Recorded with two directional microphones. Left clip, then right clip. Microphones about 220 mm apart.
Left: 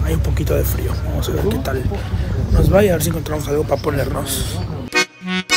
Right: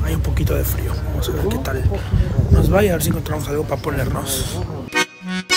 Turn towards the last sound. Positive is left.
turn(degrees=20)  # may be behind; listen again after turning